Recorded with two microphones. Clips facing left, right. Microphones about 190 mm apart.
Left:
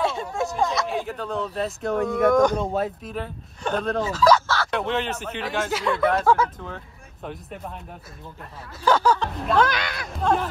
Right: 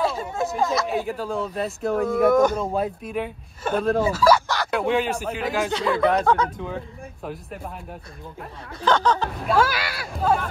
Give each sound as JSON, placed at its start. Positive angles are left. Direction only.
{"t": 0.0, "sound": "speech", "side_deg": 0}
{"t": 8.8, "sound": "speech", "side_deg": 10}
{"t": 9.2, "sound": "speech", "side_deg": -5}